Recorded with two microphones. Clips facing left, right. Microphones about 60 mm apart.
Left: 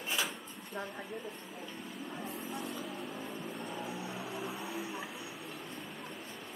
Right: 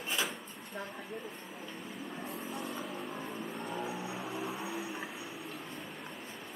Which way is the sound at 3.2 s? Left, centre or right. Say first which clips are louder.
Right 1 dB; centre.